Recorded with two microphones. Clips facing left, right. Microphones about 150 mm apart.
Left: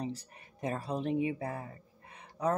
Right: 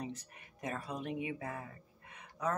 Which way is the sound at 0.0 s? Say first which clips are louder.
Left 5 dB; 30° left (ahead or behind).